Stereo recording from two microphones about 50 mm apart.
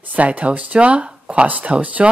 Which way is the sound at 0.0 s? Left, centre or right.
Right.